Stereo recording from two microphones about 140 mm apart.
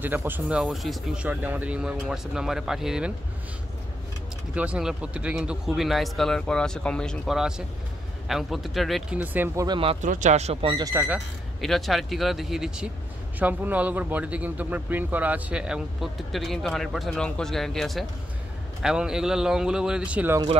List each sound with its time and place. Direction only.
0.0 s speech: 15° right (ahead or behind)
4.6 s speech: 10° right (ahead or behind)
9.2 s speech: 15° right (ahead or behind)
9.7 s speech: 40° right (ahead or behind)
10.0 s speech: 65° right (ahead or behind)
10.7 s speech: 25° right (ahead or behind)
11.6 s speech: centre (ahead or behind)